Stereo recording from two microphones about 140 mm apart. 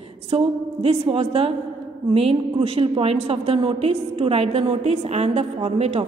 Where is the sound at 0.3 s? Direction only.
45° right (ahead or behind).